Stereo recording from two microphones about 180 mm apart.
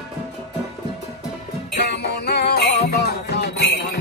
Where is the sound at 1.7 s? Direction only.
70° left (ahead or behind).